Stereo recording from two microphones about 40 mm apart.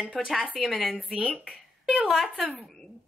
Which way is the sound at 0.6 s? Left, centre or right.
Centre.